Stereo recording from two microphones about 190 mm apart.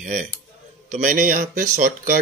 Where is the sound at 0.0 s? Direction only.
40° right (ahead or behind).